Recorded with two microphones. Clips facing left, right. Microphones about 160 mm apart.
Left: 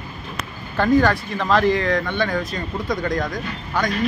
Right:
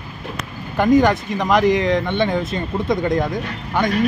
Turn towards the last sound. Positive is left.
turn(degrees=-25)  # may be behind; listen again after turning